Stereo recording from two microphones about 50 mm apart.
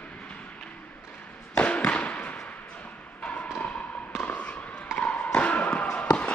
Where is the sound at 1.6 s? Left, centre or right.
Left.